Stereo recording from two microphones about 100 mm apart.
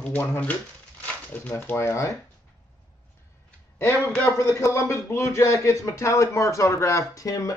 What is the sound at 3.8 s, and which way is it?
Speech, 25° left (ahead or behind).